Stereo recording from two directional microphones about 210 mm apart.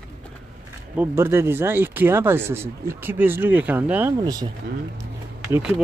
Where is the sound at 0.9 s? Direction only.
10° right (ahead or behind).